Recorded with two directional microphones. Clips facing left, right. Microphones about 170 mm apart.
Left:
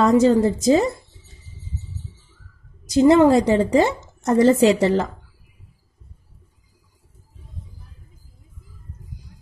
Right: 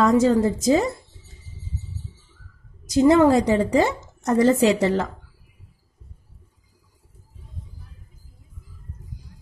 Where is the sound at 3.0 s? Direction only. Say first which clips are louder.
Left 2 dB; 25° left (ahead or behind).